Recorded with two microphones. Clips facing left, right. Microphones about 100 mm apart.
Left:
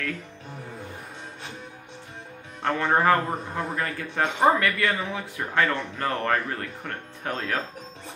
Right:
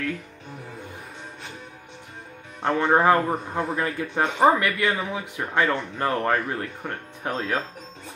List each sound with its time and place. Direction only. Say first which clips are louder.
2.7 s a man's voice: right 2 dB; 10° right (ahead or behind)
6.0 s a man's voice: right 2 dB; 10° right (ahead or behind)